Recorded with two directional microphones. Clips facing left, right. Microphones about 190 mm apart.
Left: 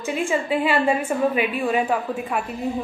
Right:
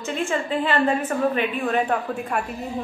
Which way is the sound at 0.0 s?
15° left (ahead or behind).